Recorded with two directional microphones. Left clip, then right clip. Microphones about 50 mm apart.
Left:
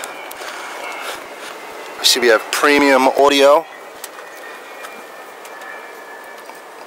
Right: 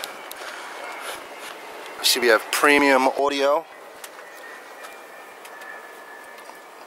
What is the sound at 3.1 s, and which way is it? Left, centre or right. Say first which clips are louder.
Speech: left 10 dB; left.